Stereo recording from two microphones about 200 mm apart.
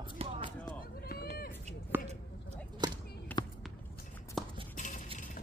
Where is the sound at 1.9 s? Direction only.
10° right (ahead or behind).